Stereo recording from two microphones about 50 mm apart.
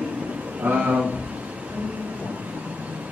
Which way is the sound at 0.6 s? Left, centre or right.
Right.